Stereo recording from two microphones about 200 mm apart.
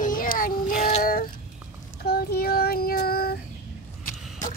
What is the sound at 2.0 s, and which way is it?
Child singing, 50° left (ahead or behind).